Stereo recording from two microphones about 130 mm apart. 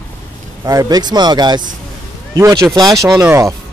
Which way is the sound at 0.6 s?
30° right (ahead or behind).